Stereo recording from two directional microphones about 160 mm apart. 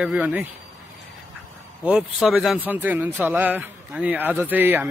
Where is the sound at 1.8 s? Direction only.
5° right (ahead or behind).